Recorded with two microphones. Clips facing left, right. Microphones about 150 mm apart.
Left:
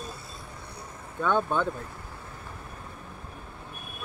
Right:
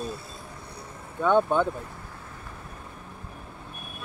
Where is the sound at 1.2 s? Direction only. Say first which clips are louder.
Right 4 dB; 15° right (ahead or behind).